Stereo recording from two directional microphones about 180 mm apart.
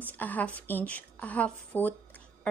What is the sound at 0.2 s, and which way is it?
A woman's voice, 10° left (ahead or behind).